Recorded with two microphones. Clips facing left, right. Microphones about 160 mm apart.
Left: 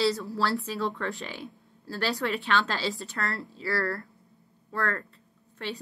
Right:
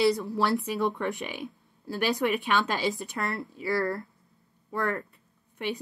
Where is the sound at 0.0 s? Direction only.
15° right (ahead or behind).